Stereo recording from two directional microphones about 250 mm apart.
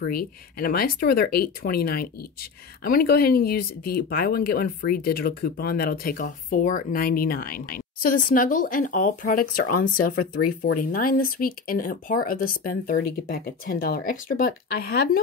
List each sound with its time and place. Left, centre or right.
0.0 s speech: left